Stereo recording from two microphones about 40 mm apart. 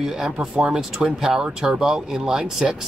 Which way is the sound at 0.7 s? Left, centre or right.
Centre.